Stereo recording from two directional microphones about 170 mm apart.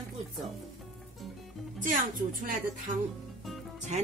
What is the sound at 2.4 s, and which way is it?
Speech, 55° right (ahead or behind).